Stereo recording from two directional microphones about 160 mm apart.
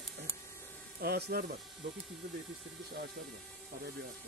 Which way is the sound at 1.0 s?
80° right.